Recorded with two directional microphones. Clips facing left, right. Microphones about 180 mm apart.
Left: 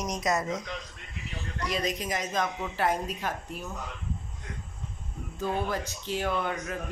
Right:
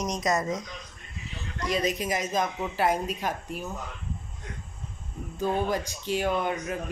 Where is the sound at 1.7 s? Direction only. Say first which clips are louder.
Right 4 dB; 5° right (ahead or behind).